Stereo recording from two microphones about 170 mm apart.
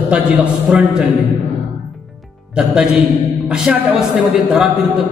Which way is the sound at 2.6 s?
5° right (ahead or behind).